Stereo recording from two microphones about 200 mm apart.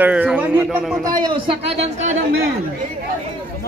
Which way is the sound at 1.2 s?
30° right (ahead or behind).